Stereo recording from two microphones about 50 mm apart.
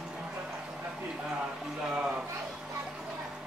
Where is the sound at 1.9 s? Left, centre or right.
Right.